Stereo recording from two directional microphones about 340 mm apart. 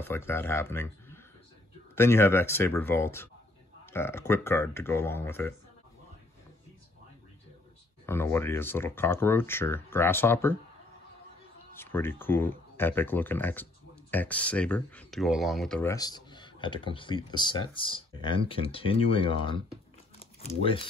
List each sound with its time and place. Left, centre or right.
0.0 s speech: centre
8.1 s speech: centre
11.7 s speech: centre